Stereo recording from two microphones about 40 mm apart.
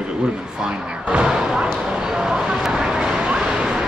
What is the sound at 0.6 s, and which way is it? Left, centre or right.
A man's voice, right.